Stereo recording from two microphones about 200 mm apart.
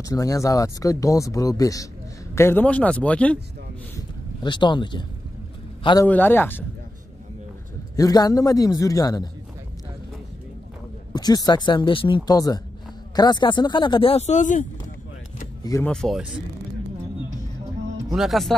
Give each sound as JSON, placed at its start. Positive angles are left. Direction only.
{"t": 0.0, "sound": "speech", "side_deg": 15}
{"t": 4.4, "sound": "speech", "side_deg": 25}
{"t": 6.0, "sound": "speech", "side_deg": 10}
{"t": 7.9, "sound": "speech", "side_deg": 20}
{"t": 11.1, "sound": "speech", "side_deg": 20}
{"t": 15.6, "sound": "speech", "side_deg": 15}
{"t": 15.9, "sound": "speech", "side_deg": 0}
{"t": 18.1, "sound": "speech", "side_deg": 0}